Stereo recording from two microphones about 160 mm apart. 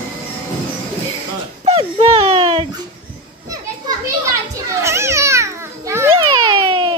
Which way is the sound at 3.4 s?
20° right (ahead or behind).